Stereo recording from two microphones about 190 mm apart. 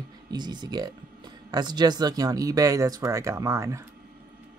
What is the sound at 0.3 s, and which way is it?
Speech, 20° right (ahead or behind).